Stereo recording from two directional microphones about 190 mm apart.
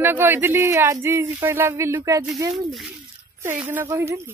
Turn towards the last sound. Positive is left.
turn(degrees=-15)  # may be behind; listen again after turning